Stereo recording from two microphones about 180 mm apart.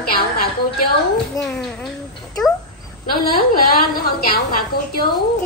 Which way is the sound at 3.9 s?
55° left (ahead or behind).